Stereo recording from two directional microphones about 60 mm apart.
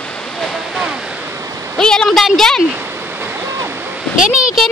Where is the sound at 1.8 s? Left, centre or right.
Centre.